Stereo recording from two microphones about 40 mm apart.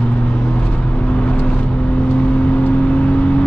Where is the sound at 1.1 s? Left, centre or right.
Left.